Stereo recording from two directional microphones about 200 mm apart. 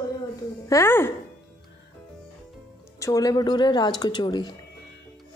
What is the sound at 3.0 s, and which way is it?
A woman's voice, 15° left (ahead or behind).